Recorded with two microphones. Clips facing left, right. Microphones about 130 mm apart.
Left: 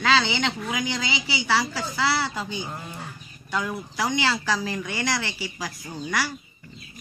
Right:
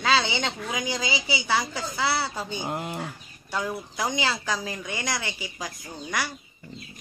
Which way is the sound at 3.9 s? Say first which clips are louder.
Left 3 dB; 20° right (ahead or behind).